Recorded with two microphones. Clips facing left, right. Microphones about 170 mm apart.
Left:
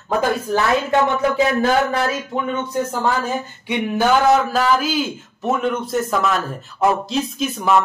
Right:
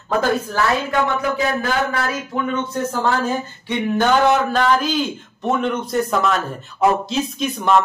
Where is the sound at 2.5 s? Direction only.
15° left (ahead or behind).